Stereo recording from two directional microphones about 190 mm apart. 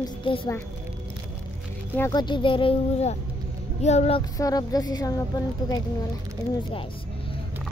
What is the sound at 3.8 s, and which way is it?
Child singing, 35° left (ahead or behind).